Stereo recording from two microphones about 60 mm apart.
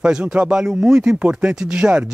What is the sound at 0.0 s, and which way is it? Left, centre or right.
Speech, centre.